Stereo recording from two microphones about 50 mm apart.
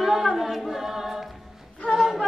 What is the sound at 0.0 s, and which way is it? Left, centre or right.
A capella, centre.